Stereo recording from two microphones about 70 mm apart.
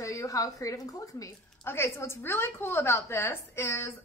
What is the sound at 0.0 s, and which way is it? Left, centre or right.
A woman's voice, left.